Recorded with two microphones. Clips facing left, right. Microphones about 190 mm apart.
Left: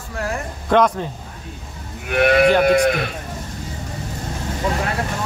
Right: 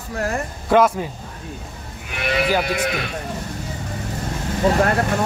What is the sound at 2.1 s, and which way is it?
Speech, 55° left (ahead or behind).